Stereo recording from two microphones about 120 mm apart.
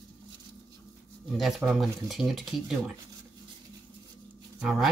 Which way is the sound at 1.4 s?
Centre (ahead or behind).